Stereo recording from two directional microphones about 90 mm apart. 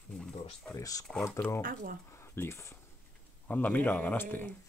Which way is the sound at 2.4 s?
30° left (ahead or behind).